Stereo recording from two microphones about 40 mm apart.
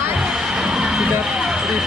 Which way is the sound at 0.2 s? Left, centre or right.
Centre.